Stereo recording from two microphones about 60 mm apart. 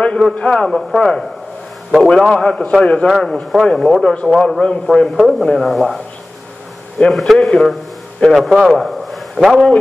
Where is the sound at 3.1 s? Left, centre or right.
Centre.